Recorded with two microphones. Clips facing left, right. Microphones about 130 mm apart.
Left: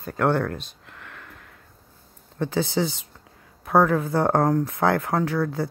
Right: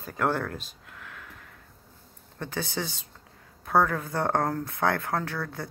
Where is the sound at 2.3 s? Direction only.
20° left (ahead or behind).